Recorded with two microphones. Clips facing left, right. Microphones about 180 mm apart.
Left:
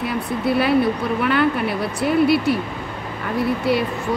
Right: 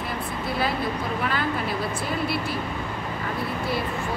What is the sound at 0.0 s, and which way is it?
A woman's voice, 65° left (ahead or behind).